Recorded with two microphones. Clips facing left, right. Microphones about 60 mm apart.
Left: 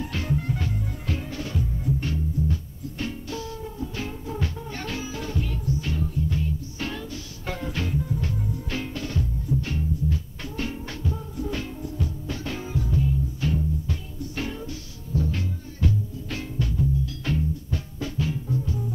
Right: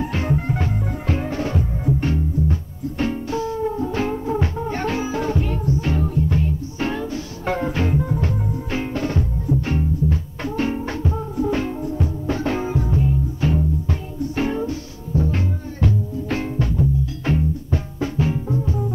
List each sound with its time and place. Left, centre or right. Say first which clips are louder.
0.0 s music: right 6 dB; right
3.6 s music: right 11 dB; right
6.8 s music: right 11 dB; right
8.0 s music: right 6 dB; right